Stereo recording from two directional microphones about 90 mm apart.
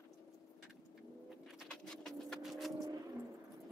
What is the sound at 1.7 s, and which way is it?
Vehicle, 5° left (ahead or behind).